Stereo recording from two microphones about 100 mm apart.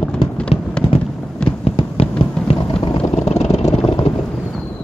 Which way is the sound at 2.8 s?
60° left (ahead or behind).